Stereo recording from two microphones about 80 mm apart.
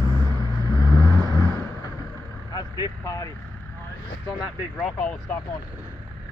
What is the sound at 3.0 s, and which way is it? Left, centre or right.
Speech, left.